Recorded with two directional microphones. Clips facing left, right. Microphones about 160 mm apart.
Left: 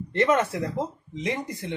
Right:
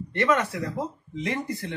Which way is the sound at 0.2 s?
20° left (ahead or behind).